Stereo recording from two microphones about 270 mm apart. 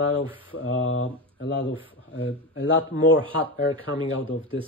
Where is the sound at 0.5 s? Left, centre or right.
Left.